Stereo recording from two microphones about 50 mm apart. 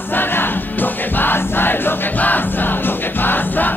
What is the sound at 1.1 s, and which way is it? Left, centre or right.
Crowd, left.